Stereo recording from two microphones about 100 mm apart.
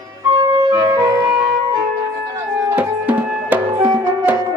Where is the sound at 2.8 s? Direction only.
15° right (ahead or behind).